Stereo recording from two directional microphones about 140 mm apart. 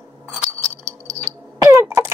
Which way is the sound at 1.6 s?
20° right (ahead or behind).